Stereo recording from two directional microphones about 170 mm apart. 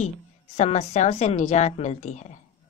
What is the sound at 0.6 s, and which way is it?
A woman's voice, 40° left (ahead or behind).